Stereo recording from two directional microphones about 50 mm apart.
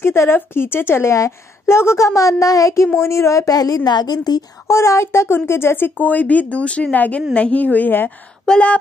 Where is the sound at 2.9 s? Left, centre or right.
Left.